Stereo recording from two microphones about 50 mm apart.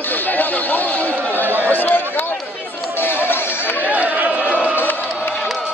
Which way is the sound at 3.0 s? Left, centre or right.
Left.